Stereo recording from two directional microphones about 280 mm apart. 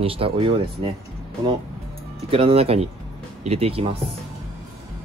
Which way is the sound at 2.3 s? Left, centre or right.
Centre.